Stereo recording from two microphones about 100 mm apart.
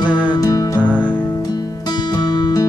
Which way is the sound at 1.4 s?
40° left (ahead or behind).